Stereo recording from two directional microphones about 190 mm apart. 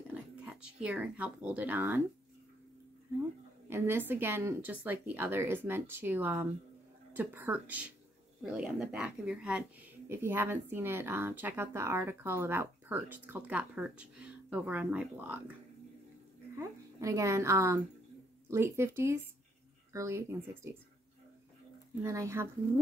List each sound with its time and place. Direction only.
0.4 s speech: 5° right (ahead or behind)
3.6 s speech: 10° right (ahead or behind)
16.5 s a woman's voice: 15° right (ahead or behind)
22.0 s speech: 15° right (ahead or behind)